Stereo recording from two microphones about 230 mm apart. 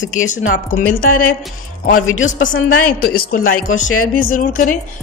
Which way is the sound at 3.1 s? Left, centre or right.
Left.